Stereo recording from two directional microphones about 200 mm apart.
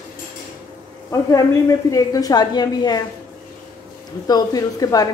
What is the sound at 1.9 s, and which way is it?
A woman's voice, 15° left (ahead or behind).